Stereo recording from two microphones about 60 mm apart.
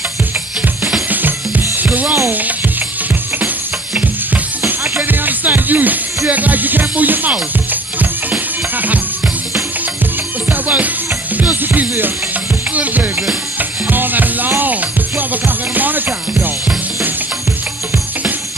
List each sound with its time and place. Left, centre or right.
0.6 s music: centre
1.8 s music: right
4.3 s music: right
10.5 s music: right